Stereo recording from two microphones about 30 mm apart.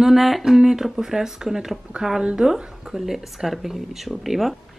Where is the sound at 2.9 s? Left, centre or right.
Centre.